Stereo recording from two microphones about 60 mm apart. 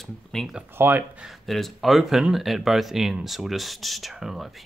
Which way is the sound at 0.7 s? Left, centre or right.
Right.